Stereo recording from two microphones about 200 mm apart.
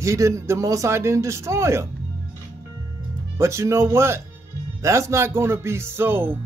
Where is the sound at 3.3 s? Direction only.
15° right (ahead or behind).